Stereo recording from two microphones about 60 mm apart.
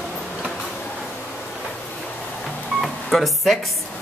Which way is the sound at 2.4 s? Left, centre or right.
Centre.